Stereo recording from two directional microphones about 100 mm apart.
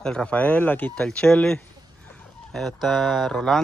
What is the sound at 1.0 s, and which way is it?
Speech, 10° left (ahead or behind).